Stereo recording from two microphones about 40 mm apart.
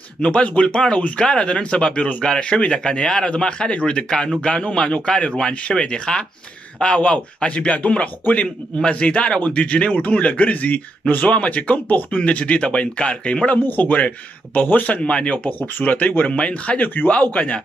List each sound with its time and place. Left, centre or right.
0.2 s a man's voice: left
13.6 s speech: left
15.0 s speech: left
15.3 s a man's voice: left
16.3 s a man's voice: left
16.8 s speech: left
17.2 s a man's voice: left